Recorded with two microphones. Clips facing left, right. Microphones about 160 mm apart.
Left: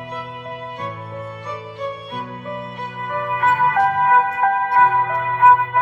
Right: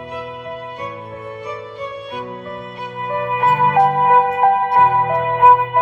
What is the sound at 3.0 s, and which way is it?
Music, 30° right (ahead or behind).